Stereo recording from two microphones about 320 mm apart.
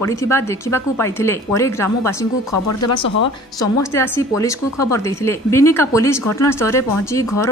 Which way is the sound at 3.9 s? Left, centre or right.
Centre.